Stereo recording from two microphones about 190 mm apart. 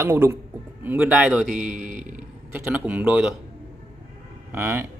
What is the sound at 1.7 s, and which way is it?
Speech, 45° right (ahead or behind).